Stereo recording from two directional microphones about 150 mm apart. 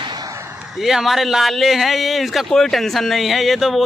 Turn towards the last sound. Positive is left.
turn(degrees=0)  # may be behind; listen again after turning